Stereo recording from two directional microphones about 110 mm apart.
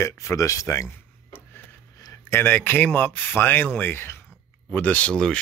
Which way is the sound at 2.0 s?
30° left (ahead or behind).